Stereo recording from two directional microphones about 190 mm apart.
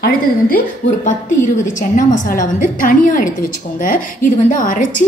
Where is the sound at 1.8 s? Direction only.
40° left (ahead or behind).